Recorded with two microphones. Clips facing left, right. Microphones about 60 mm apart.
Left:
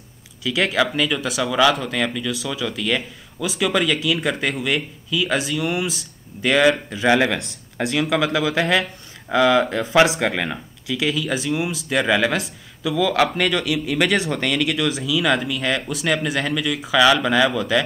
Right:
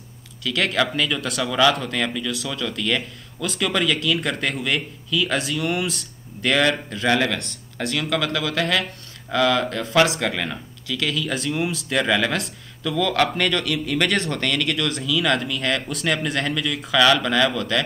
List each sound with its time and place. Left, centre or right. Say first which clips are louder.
0.4 s speech: left 2 dB; centre